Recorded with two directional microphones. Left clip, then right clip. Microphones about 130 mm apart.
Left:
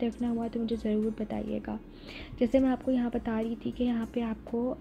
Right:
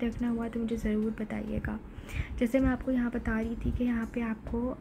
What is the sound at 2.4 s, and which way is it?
A woman's voice, 25° left (ahead or behind).